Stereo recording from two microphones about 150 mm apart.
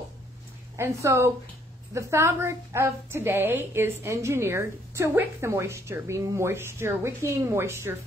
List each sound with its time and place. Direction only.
0.7 s a woman's voice: 20° right (ahead or behind)